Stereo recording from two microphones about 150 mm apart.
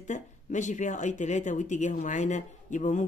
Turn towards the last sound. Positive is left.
turn(degrees=55)  # may be behind; listen again after turning